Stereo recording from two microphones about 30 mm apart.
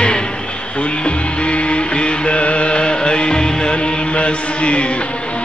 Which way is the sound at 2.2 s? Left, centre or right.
Left.